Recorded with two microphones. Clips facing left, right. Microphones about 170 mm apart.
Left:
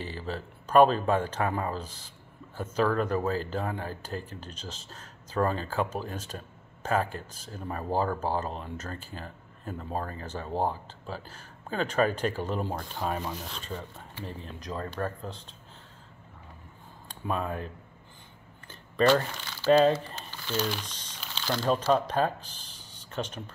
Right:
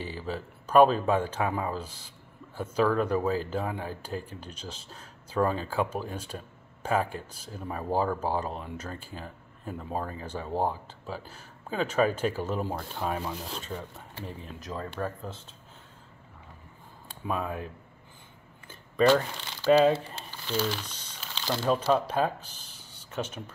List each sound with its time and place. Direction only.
0.0 s speech: 10° right (ahead or behind)
17.1 s speech: 5° right (ahead or behind)
18.7 s a sound: 5° right (ahead or behind)
19.6 s speech: 10° right (ahead or behind)